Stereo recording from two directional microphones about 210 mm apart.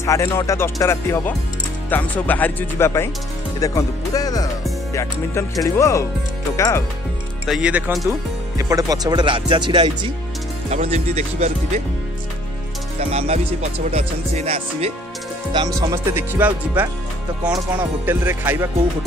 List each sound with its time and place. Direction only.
0.0 s speech: 15° left (ahead or behind)
7.4 s speech: 5° right (ahead or behind)
8.5 s music: 15° right (ahead or behind)
10.7 s speech: 30° right (ahead or behind)
13.1 s music: 30° right (ahead or behind)
15.5 s speech: 20° right (ahead or behind)